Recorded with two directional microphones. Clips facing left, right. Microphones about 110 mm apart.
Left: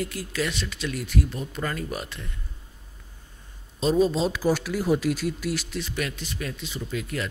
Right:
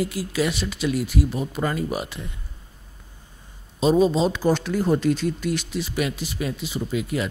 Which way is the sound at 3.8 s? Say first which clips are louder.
Right 3 dB; 5° right (ahead or behind).